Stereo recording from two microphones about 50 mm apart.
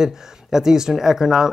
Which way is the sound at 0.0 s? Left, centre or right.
Centre.